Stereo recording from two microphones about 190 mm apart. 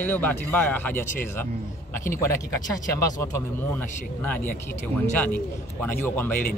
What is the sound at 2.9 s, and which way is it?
Speech, 10° left (ahead or behind).